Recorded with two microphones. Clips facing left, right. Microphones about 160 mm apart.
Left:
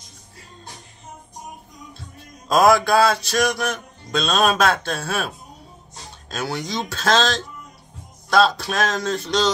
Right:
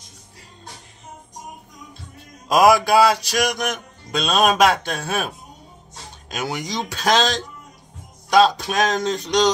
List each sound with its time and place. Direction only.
2.4 s speech: 10° right (ahead or behind)
6.3 s speech: 15° right (ahead or behind)